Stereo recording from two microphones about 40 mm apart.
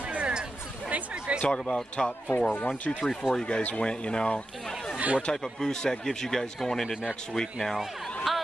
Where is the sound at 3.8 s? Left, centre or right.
Left.